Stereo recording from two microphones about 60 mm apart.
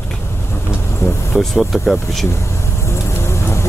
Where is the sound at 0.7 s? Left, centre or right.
Left.